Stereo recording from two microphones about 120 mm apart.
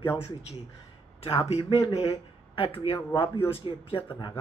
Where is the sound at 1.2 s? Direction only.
50° left (ahead or behind).